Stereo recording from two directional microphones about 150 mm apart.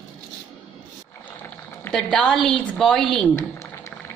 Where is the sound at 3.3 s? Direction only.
20° left (ahead or behind).